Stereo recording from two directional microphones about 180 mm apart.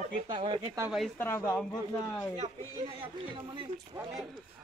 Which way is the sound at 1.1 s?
15° left (ahead or behind).